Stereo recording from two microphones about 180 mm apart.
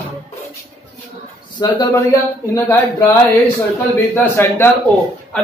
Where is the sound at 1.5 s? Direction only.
20° left (ahead or behind).